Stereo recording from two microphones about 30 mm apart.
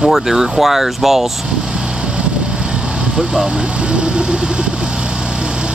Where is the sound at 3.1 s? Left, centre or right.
Centre.